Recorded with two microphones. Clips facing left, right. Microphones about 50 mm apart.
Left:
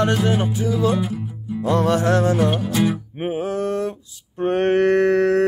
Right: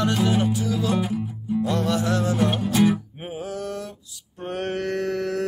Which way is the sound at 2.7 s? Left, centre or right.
Centre.